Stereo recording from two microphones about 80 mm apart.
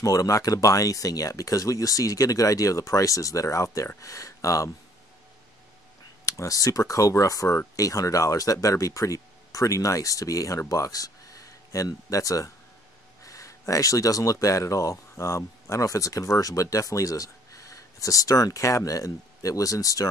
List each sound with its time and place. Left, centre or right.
0.0 s speech: left
6.2 s speech: left